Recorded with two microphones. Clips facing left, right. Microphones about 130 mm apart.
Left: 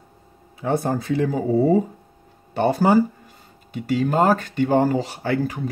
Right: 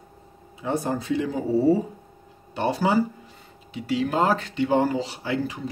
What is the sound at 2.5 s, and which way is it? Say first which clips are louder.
Speech: left 5 dB; 50° left (ahead or behind).